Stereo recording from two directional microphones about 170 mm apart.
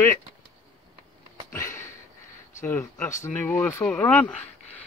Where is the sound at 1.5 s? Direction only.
15° left (ahead or behind).